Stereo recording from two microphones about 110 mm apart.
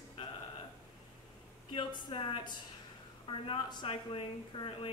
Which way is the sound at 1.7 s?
50° left (ahead or behind).